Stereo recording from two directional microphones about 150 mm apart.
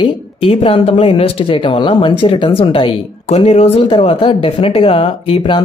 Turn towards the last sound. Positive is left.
turn(degrees=40)  # may be behind; listen again after turning